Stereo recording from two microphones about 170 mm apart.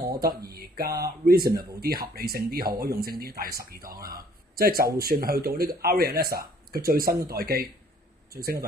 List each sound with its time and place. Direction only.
0.5 s speech: 65° right (ahead or behind)
1.5 s speech: 25° right (ahead or behind)
1.8 s speech: 65° right (ahead or behind)